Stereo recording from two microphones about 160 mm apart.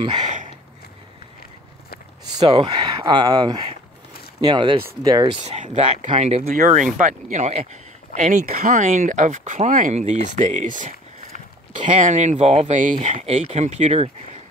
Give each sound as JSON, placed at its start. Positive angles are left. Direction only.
{"t": 0.0, "sound": "speech", "side_deg": -30}
{"t": 2.6, "sound": "speech", "side_deg": -25}
{"t": 5.4, "sound": "speech", "side_deg": -40}
{"t": 6.4, "sound": "speech", "side_deg": -55}